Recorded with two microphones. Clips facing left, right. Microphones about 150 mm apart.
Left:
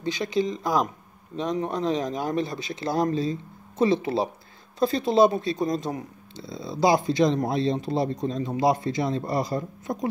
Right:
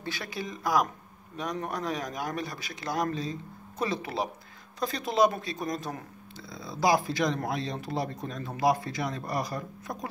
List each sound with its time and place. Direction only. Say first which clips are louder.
0.0 s speech: left 11 dB; 20° left (ahead or behind)